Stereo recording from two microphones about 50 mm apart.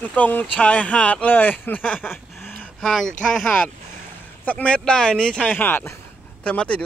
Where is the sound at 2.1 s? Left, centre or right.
Left.